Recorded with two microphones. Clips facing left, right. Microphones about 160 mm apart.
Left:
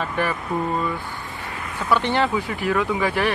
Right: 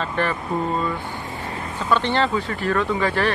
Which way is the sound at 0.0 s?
10° left (ahead or behind).